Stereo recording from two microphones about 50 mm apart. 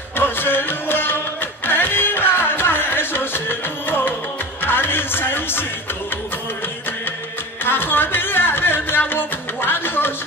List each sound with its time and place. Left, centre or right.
0.2 s music: left
7.6 s music: left